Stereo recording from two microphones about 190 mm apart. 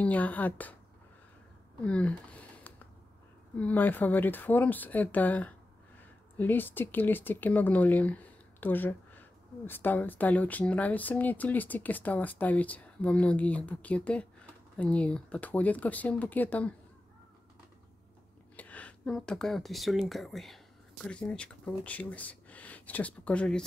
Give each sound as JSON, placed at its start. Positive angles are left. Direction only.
{"t": 0.0, "sound": "speech", "side_deg": 10}
{"t": 1.9, "sound": "speech", "side_deg": 5}
{"t": 3.5, "sound": "speech", "side_deg": 10}
{"t": 18.6, "sound": "speech", "side_deg": 5}